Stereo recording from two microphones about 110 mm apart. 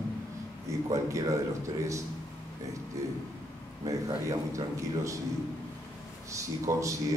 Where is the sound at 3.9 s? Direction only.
30° right (ahead or behind).